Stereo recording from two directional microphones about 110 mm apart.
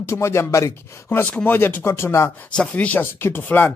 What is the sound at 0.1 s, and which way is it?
Speech, 25° left (ahead or behind).